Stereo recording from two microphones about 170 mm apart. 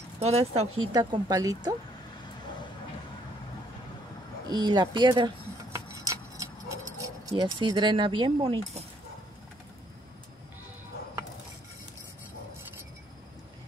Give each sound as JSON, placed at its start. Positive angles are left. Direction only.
{"t": 0.2, "sound": "speech", "side_deg": -40}
{"t": 0.9, "sound": "speech", "side_deg": -20}
{"t": 4.5, "sound": "keys jangling", "side_deg": -25}